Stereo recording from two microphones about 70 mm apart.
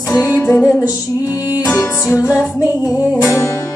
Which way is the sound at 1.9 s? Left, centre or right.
Left.